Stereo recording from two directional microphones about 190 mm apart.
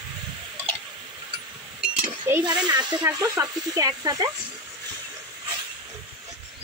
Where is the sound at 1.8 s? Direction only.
10° right (ahead or behind).